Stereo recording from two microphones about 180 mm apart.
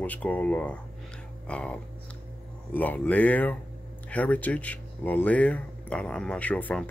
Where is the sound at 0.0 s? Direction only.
10° left (ahead or behind).